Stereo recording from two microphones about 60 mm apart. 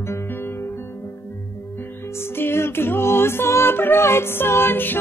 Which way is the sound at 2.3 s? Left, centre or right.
Left.